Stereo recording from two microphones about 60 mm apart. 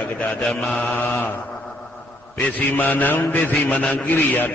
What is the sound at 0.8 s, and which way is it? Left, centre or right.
Mantra, left.